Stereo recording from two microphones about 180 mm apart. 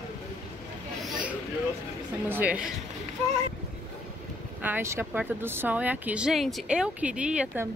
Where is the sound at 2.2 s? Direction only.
10° right (ahead or behind).